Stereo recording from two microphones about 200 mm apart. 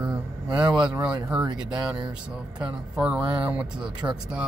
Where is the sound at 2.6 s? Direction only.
5° right (ahead or behind).